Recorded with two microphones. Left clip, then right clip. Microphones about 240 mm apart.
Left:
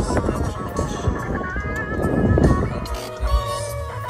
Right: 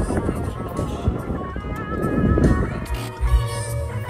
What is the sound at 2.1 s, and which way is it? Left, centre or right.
Music, centre.